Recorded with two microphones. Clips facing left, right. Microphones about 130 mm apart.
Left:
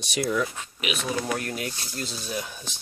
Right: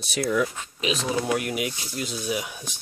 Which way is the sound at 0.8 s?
30° right (ahead or behind).